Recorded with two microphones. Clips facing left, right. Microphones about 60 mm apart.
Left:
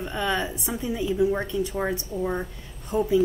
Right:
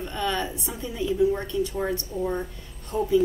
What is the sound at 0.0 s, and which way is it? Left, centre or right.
A woman's voice, centre.